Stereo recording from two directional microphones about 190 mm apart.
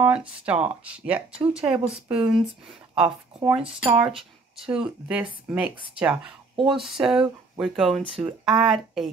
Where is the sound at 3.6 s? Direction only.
30° right (ahead or behind).